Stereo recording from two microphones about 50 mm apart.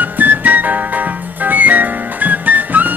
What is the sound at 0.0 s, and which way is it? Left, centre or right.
Music, right.